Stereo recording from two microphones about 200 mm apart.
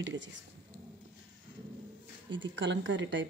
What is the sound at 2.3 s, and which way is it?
Speech, 65° right (ahead or behind).